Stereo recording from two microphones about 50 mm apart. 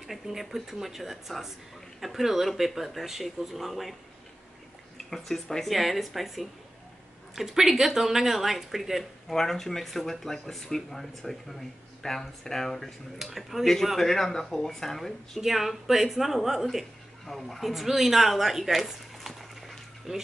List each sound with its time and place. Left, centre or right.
0.0 s speech: centre
4.9 s speech: centre
9.3 s speech: centre
13.2 s speech: centre
13.9 s speech: centre
17.3 s speech: centre